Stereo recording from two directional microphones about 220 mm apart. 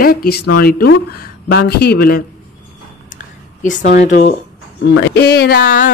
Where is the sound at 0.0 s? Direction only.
40° left (ahead or behind).